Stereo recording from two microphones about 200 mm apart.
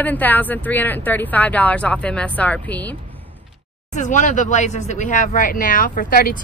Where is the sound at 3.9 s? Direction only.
40° left (ahead or behind).